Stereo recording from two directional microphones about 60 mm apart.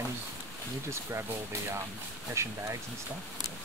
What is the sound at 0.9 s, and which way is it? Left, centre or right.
Speech, right.